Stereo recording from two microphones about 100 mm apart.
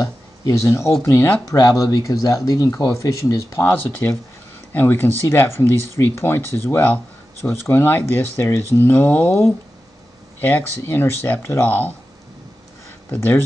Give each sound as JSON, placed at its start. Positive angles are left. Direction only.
{"t": 0.0, "sound": "speech", "side_deg": 40}
{"t": 1.6, "sound": "speech", "side_deg": 35}
{"t": 13.1, "sound": "speech", "side_deg": 15}